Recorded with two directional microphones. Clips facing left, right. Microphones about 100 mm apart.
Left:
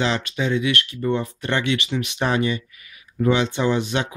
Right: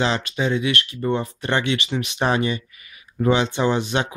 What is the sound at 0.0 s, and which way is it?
Speech, 30° right (ahead or behind).